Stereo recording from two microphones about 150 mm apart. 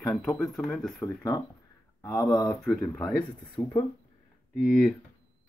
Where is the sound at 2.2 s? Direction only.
25° left (ahead or behind).